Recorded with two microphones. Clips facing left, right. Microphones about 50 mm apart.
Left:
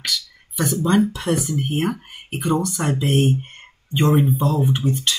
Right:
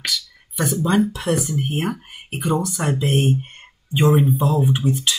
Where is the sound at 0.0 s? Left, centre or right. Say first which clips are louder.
Even; centre.